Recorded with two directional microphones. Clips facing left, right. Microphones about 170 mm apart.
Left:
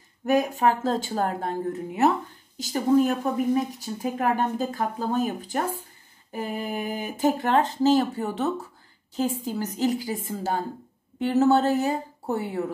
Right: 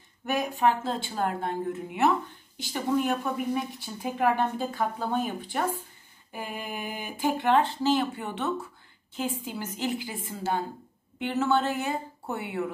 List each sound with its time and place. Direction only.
0.2 s a woman's voice: 40° left (ahead or behind)